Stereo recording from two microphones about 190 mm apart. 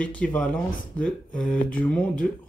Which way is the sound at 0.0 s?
5° left (ahead or behind).